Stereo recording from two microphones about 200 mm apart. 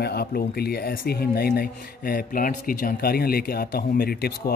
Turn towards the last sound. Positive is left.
turn(degrees=50)  # may be behind; listen again after turning